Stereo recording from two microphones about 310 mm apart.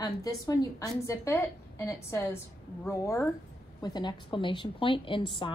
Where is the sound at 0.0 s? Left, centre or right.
Centre.